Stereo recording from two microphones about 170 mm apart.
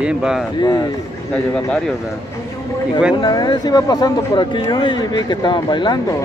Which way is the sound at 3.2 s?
25° left (ahead or behind).